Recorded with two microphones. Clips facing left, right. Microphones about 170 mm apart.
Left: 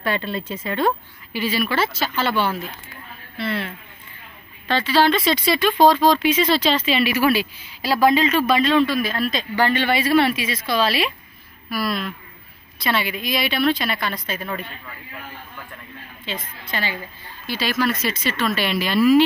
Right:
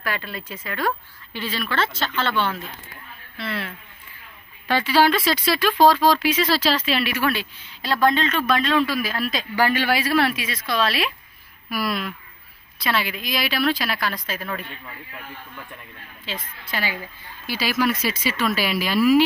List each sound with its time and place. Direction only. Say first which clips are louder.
0.0 s speech: left 5 dB; 25° left (ahead or behind)
1.3 s speech: left 5 dB; 10° left (ahead or behind)
4.6 s speech: even; 10° right (ahead or behind)
11.7 s speech: left 1 dB; 10° right (ahead or behind)
12.7 s speech: left 2 dB; centre (ahead or behind)
16.3 s speech: left 2 dB; 5° right (ahead or behind)